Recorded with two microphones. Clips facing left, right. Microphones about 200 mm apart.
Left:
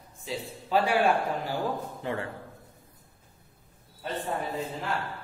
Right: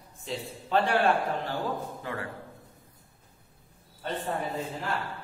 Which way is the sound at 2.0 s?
25° left (ahead or behind).